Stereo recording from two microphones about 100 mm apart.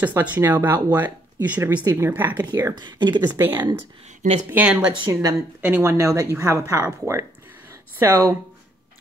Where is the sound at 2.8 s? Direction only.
50° right (ahead or behind).